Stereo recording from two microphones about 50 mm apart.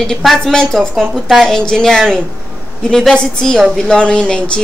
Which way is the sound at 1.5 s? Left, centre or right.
Centre.